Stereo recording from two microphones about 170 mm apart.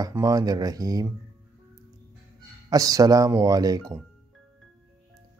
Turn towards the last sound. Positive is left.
turn(degrees=-20)  # may be behind; listen again after turning